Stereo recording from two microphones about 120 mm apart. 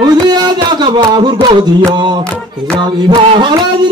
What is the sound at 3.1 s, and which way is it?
Speech, 40° right (ahead or behind).